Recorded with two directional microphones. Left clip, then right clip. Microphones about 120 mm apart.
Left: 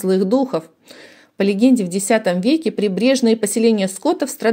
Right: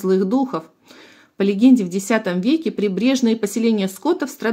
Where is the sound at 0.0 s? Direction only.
30° left (ahead or behind).